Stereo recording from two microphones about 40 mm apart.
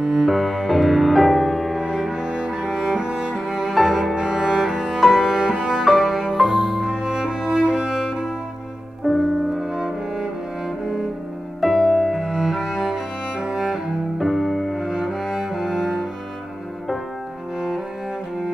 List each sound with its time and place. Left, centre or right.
0.0 s music: centre
1.8 s cello: centre
5.4 s music: centre
5.9 s music: centre
9.0 s music: centre
11.6 s cello: centre
14.1 s music: centre
14.9 s cello: centre